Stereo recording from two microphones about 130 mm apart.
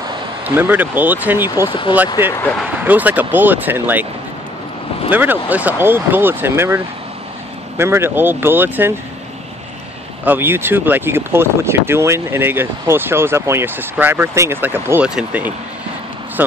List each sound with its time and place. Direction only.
0.6 s speech: 15° right (ahead or behind)
1.7 s speech: 40° left (ahead or behind)
2.8 s speech: 15° right (ahead or behind)
5.1 s speech: 15° right (ahead or behind)
10.2 s speech: 15° right (ahead or behind)
16.4 s vehicle: 15° right (ahead or behind)